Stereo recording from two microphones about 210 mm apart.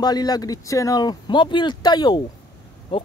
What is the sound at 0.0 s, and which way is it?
Speech, 20° left (ahead or behind).